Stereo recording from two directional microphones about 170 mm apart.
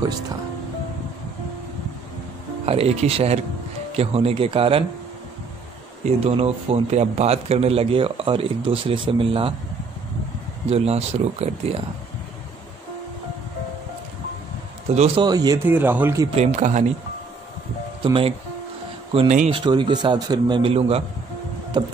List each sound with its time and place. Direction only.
2.6 s a man's voice: 35° right (ahead or behind)
6.0 s a man's voice: 35° right (ahead or behind)
10.7 s a man's voice: 35° right (ahead or behind)
15.0 s a man's voice: 30° right (ahead or behind)
16.3 s speech: 45° right (ahead or behind)
18.0 s a man's voice: 30° right (ahead or behind)
19.1 s a man's voice: 40° right (ahead or behind)
19.6 s a man's voice: 25° right (ahead or behind)